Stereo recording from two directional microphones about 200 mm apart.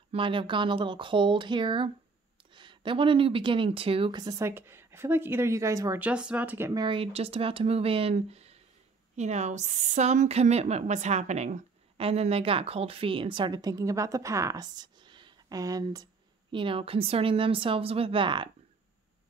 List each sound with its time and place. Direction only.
0.1 s a woman's voice: 25° right (ahead or behind)